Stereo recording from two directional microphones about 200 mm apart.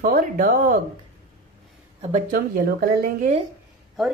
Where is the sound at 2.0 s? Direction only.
40° right (ahead or behind).